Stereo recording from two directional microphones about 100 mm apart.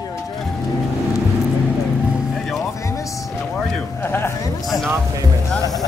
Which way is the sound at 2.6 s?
30° left (ahead or behind).